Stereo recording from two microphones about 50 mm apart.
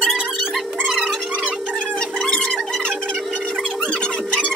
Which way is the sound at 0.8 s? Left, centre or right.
Centre.